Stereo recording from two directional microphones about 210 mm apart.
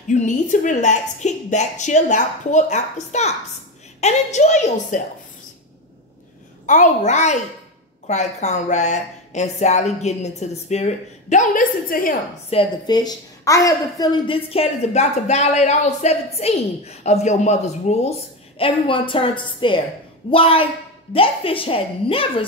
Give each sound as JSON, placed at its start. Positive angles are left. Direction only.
{"t": 0.1, "sound": "speech", "side_deg": 35}
{"t": 6.6, "sound": "speech", "side_deg": 35}
{"t": 12.4, "sound": "a woman's voice", "side_deg": 25}